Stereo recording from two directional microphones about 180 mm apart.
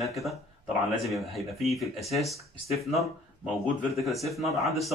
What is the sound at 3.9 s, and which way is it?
Speech, centre (ahead or behind).